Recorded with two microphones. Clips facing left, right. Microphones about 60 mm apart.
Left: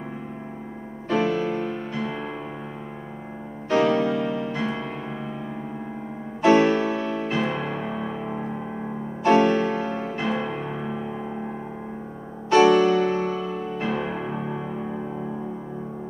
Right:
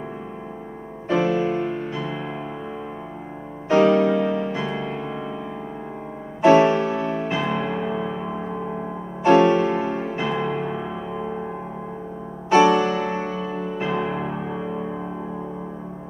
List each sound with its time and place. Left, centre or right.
1.0 s music: centre
2.0 s music: centre
3.6 s music: centre
6.4 s music: centre
9.2 s music: centre
9.8 s music: right
10.0 s music: centre
12.4 s music: centre
13.8 s music: centre